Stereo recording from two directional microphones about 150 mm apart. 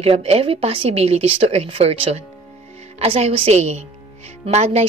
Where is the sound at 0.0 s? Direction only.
40° right (ahead or behind).